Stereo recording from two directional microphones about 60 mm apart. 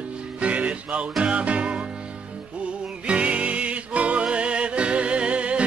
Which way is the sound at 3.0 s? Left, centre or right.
Centre.